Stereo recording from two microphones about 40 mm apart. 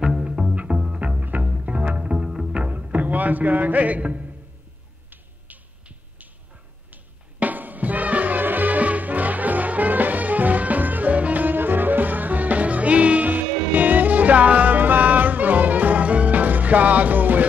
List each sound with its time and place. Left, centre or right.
0.0 s music: centre; by 4.3 s right
5.5 s dog: right
6.9 s music: right